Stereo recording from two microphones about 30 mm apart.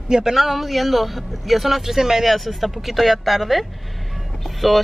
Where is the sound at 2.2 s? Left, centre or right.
Centre.